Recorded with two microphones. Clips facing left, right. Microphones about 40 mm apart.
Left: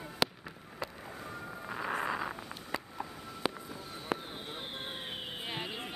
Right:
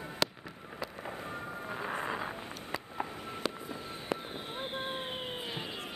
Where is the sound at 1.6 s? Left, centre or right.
Centre.